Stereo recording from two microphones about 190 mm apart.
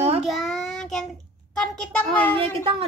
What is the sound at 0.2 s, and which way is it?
Child singing, centre (ahead or behind).